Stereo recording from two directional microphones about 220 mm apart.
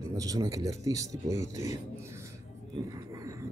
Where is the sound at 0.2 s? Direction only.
15° right (ahead or behind).